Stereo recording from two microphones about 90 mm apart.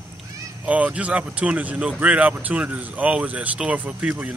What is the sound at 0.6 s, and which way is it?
Speech, 15° right (ahead or behind).